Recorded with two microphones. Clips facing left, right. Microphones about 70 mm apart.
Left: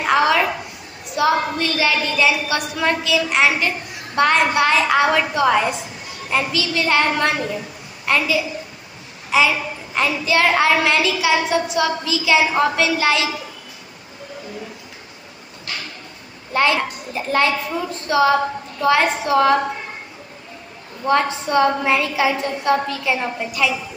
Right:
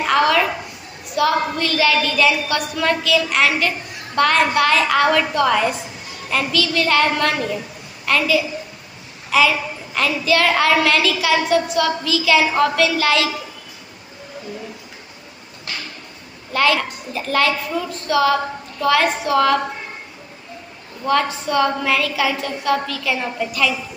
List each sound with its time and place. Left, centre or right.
0.0 s a sound: centre
1.1 s a woman's voice: centre
16.5 s a woman's voice: left
21.0 s a woman's voice: left